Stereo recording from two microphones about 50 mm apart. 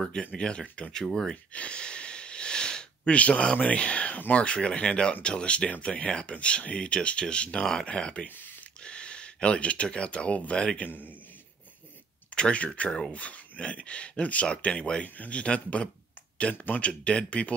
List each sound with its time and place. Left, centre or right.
0.2 s speech: left
1.0 s speech: centre
1.3 s a sound: left
3.2 s speech: left
12.4 s speech: left